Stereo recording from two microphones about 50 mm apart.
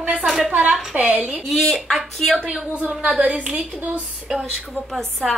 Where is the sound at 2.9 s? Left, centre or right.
Right.